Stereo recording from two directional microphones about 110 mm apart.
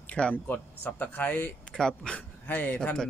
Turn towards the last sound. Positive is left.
turn(degrees=10)  # may be behind; listen again after turning